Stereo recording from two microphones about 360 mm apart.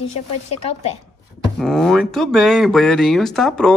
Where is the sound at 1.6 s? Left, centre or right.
Centre.